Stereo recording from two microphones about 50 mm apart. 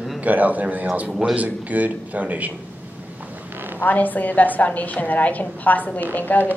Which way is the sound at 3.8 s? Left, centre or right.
Left.